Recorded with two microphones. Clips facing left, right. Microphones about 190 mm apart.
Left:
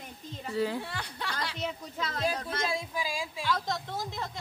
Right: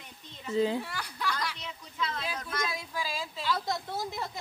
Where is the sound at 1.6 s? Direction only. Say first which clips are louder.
Left 3 dB; 45° left (ahead or behind); by 3.4 s 15° left (ahead or behind).